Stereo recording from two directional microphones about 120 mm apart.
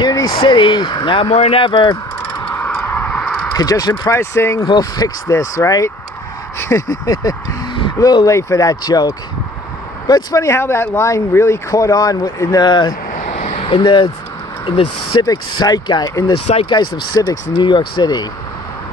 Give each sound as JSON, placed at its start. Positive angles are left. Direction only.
{"t": 0.0, "sound": "speech", "side_deg": 35}
{"t": 1.3, "sound": "speech", "side_deg": 65}
{"t": 1.6, "sound": "speech", "side_deg": 45}
{"t": 2.3, "sound": "a sound", "side_deg": 15}
{"t": 3.5, "sound": "speech", "side_deg": 30}
{"t": 4.6, "sound": "speech", "side_deg": 35}
{"t": 13.1, "sound": "a sound", "side_deg": 85}
{"t": 13.8, "sound": "speech", "side_deg": 40}
{"t": 15.2, "sound": "speech", "side_deg": 35}